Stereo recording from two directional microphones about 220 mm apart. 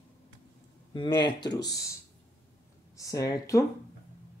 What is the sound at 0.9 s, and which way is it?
Speech, 20° left (ahead or behind).